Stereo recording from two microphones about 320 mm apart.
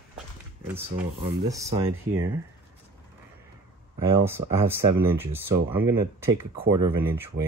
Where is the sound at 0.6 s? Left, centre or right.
Centre.